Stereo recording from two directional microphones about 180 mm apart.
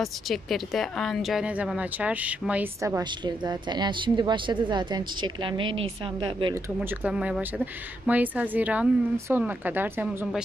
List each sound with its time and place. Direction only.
0.0 s a woman's voice: centre (ahead or behind); by 6.5 s 30° right (ahead or behind)
6.5 s a woman's voice: 10° right (ahead or behind)